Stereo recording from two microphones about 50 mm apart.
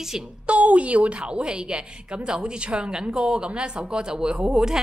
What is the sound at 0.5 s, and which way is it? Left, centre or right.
A woman's voice, right.